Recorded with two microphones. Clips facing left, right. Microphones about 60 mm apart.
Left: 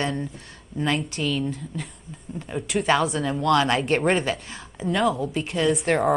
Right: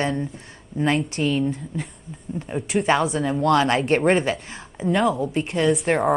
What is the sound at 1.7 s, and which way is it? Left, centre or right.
A woman's voice, centre.